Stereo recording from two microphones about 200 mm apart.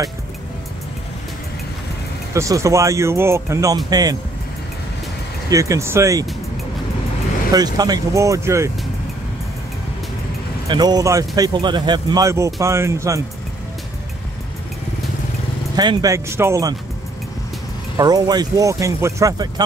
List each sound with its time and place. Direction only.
2.3 s speech: 15° right (ahead or behind)
5.5 s speech: 15° right (ahead or behind)
7.5 s speech: 20° right (ahead or behind)
10.7 s speech: 20° right (ahead or behind)
15.7 s speech: 20° right (ahead or behind)
17.9 s speech: 20° right (ahead or behind)